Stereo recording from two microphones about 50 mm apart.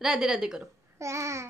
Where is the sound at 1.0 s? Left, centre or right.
Right.